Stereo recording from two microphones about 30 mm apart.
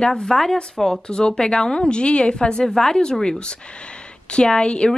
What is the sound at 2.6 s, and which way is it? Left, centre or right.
A woman's voice, left.